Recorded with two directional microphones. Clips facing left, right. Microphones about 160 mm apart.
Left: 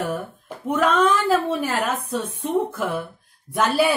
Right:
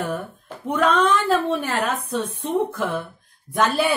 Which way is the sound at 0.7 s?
5° left (ahead or behind).